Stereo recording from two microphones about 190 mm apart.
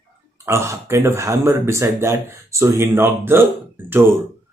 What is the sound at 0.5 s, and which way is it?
Speech, 15° right (ahead or behind).